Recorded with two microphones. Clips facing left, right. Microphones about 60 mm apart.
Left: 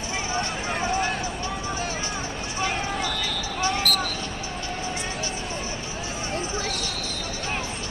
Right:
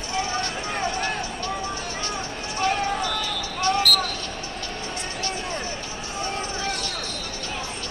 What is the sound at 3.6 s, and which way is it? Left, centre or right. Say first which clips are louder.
Basketball bounce: right 3 dB; right.